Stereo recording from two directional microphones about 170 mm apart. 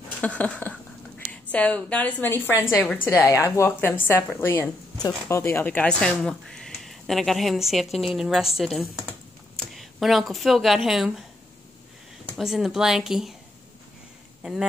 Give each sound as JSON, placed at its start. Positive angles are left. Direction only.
{"t": 0.2, "sound": "a woman's voice", "side_deg": 10}
{"t": 3.1, "sound": "a woman's voice", "side_deg": 15}
{"t": 12.4, "sound": "a woman's voice", "side_deg": 0}
{"t": 14.4, "sound": "speech", "side_deg": 0}